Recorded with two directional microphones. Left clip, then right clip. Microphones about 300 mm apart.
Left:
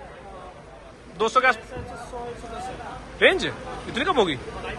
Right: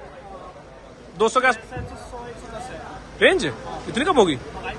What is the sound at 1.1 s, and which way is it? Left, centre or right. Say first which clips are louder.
Speech: right 1 dB; centre.